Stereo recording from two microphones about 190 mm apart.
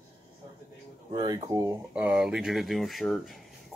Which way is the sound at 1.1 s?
25° right (ahead or behind).